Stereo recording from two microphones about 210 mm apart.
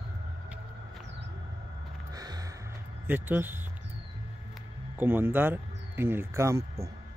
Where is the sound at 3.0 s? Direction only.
10° right (ahead or behind).